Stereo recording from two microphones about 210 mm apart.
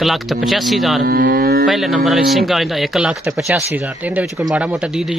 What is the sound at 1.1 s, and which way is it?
Cattle, 45° right (ahead or behind).